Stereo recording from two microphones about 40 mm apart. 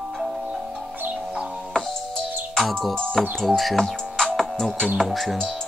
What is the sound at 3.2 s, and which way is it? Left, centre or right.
Speech, centre.